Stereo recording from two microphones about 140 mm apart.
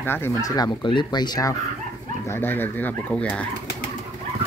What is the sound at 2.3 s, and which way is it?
Speech, 15° left (ahead or behind).